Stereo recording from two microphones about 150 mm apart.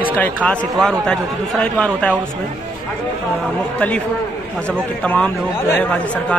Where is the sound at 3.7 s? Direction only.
10° left (ahead or behind).